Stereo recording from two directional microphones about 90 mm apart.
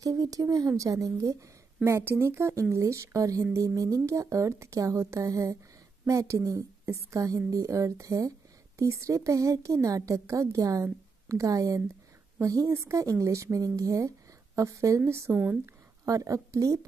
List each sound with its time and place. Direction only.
0.0 s a woman's voice: 40° right (ahead or behind)